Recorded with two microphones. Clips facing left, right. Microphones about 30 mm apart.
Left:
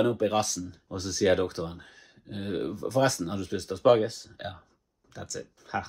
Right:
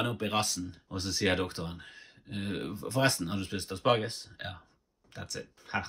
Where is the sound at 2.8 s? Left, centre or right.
Right.